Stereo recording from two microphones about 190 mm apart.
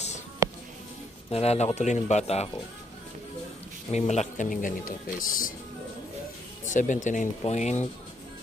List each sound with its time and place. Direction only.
0.4 s music: 15° right (ahead or behind)
1.3 s speech: 35° left (ahead or behind)
3.9 s speech: 35° left (ahead or behind)
6.7 s speech: 40° left (ahead or behind)